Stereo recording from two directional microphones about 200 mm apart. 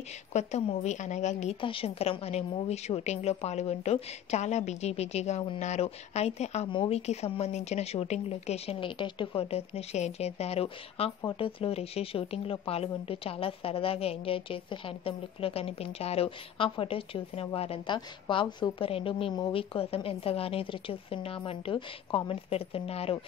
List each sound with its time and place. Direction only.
0.3 s a woman's voice: 35° left (ahead or behind)